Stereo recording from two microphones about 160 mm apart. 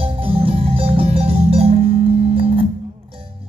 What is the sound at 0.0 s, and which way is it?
Music, 35° right (ahead or behind).